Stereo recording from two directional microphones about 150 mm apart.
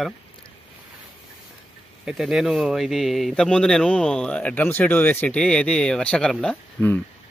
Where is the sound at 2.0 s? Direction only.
5° right (ahead or behind).